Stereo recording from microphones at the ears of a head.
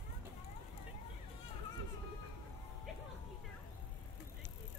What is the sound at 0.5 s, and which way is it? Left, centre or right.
Children playing, left.